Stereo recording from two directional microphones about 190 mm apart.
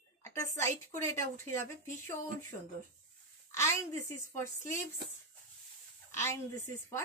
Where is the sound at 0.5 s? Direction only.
15° left (ahead or behind).